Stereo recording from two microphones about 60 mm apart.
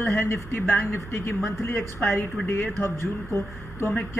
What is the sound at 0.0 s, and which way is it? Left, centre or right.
A woman's voice, left.